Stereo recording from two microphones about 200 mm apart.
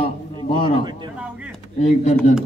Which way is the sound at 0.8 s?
20° right (ahead or behind).